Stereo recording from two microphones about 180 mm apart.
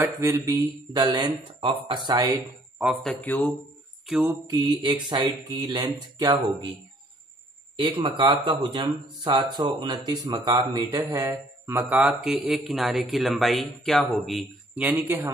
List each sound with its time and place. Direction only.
0.0 s speech: 15° right (ahead or behind)
2.8 s speech: centre (ahead or behind)
4.2 s speech: 20° right (ahead or behind)
8.2 s speech: 25° right (ahead or behind)